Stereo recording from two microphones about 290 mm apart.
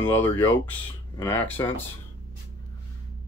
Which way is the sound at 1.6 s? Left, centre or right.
Centre.